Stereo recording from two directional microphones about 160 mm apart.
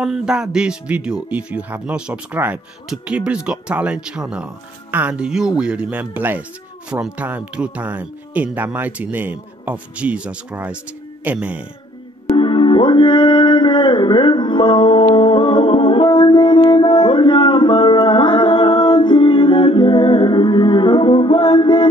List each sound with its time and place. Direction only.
0.0 s speech: 5° right (ahead or behind)
12.4 s music: 30° left (ahead or behind)